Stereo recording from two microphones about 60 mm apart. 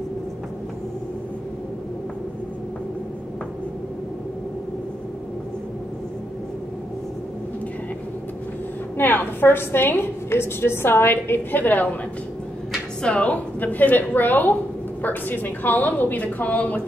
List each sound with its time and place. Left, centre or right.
8.9 s a woman's voice: left
13.0 s a woman's voice: centre